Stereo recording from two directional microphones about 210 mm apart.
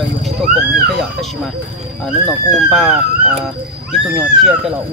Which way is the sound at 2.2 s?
Centre (ahead or behind).